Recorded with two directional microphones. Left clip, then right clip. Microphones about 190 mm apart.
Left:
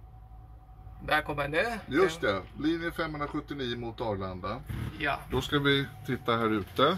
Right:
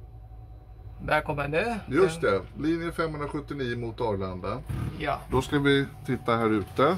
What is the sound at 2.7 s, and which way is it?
A man's voice, centre (ahead or behind).